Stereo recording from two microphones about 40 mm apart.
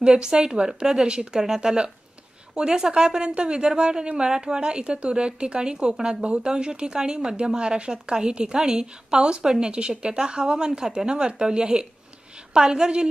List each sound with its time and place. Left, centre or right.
0.0 s a woman's voice: centre
1.4 s a woman's voice: centre